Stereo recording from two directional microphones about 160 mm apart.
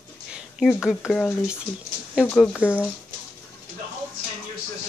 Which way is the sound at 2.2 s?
10° left (ahead or behind).